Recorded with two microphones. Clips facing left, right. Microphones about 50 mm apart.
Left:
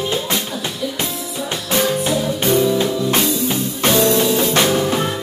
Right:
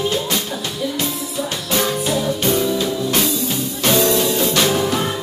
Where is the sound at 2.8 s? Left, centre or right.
Left.